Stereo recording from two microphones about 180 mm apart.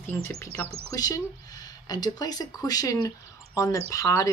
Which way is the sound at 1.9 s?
20° left (ahead or behind).